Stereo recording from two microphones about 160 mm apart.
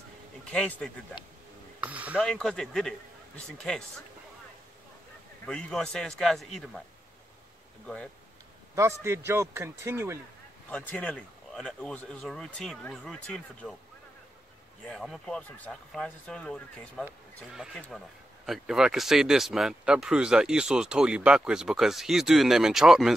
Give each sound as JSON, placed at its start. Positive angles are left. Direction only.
{"t": 0.5, "sound": "speech", "side_deg": 5}
{"t": 1.8, "sound": "a sound", "side_deg": -10}
{"t": 2.2, "sound": "speech", "side_deg": 5}
{"t": 5.4, "sound": "speech", "side_deg": 5}
{"t": 7.8, "sound": "speech", "side_deg": 5}
{"t": 8.7, "sound": "a man's voice", "side_deg": -20}
{"t": 10.7, "sound": "speech", "side_deg": 10}
{"t": 14.9, "sound": "speech", "side_deg": 0}